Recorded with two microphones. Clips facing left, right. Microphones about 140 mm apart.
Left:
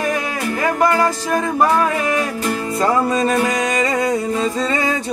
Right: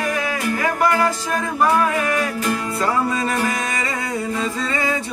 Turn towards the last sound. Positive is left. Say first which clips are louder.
# left 4 dB
turn(degrees=35)  # may be behind; listen again after turning